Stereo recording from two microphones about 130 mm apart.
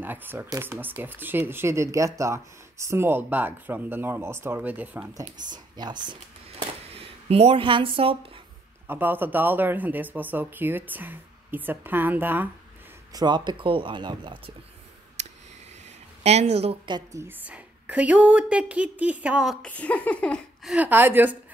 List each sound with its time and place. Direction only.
0.0 s speech: 15° right (ahead or behind)
5.5 s speech: 35° right (ahead or behind)
6.9 s speech: 50° right (ahead or behind)
8.8 s speech: 15° right (ahead or behind)
13.1 s speech: 35° right (ahead or behind)
16.2 s speech: 55° right (ahead or behind)
16.8 s speech: 35° right (ahead or behind)
17.2 s speech: 15° right (ahead or behind)
19.6 s speech: 10° left (ahead or behind)
20.7 s speech: 15° right (ahead or behind)